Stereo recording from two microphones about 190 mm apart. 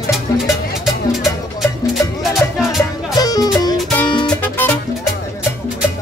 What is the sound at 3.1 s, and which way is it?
Music, 20° left (ahead or behind).